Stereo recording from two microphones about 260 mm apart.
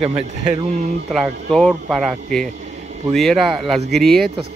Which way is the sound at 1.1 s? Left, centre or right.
Centre.